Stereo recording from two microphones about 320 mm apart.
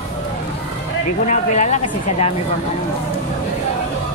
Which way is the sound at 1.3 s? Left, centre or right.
Left.